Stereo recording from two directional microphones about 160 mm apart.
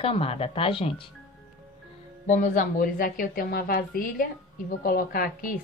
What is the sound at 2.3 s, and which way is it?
A woman's voice, 60° left (ahead or behind).